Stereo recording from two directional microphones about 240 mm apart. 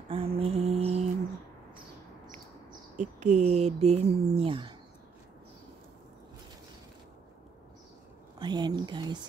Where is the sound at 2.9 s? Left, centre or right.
Right.